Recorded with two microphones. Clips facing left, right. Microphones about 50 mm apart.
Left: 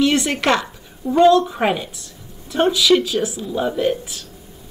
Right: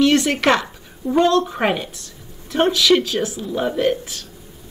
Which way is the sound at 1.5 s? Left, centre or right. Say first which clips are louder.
Even; centre.